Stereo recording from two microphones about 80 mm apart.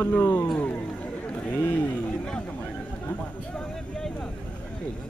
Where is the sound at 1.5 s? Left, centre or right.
Left.